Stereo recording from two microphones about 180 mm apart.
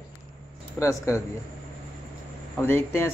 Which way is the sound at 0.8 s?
15° left (ahead or behind).